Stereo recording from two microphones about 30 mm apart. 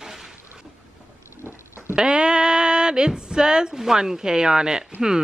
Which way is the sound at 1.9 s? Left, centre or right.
Right.